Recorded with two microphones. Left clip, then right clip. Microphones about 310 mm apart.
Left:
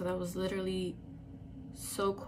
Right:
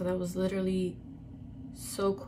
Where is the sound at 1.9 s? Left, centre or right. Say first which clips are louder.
Right 3 dB; centre.